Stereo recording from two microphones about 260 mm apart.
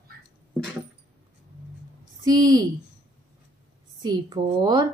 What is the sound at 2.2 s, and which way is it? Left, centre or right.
Speech, centre.